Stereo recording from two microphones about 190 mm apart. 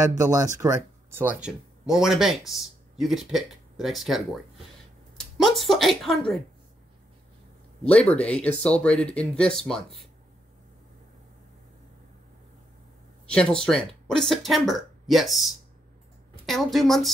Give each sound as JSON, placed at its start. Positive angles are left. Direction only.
{"t": 0.2, "sound": "speech", "side_deg": -15}
{"t": 1.1, "sound": "speech", "side_deg": -5}
{"t": 5.4, "sound": "speech", "side_deg": 0}
{"t": 7.8, "sound": "speech", "side_deg": 5}
{"t": 13.3, "sound": "speech", "side_deg": 5}